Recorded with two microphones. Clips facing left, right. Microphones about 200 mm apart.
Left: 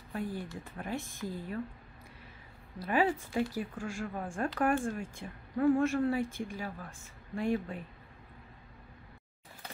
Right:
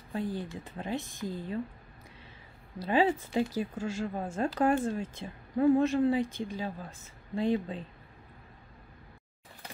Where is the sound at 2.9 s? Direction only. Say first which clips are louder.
Right 3 dB; 25° right (ahead or behind).